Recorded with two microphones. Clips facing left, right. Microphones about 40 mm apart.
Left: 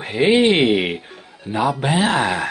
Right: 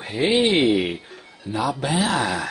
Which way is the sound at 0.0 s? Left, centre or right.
Left.